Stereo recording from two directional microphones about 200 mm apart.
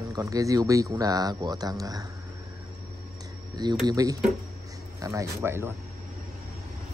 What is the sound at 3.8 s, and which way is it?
Speech, 20° right (ahead or behind).